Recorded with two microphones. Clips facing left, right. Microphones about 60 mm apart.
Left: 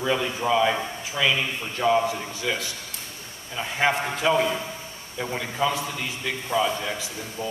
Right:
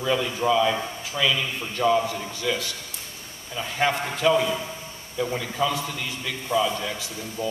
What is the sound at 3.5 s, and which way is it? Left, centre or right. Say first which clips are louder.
Speech: left 1 dB; left.